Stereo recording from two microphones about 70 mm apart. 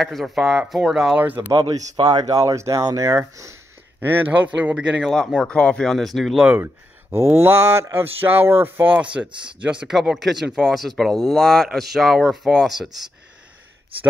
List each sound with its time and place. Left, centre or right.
0.0 s speech: centre
1.2 s a man's voice: right
1.5 s speech: right
4.0 s a man's voice: right
5.0 s speech: centre
5.4 s speech: centre
5.9 s speech: centre
6.5 s speech: right; by 9.9 s centre
10.1 s speech: centre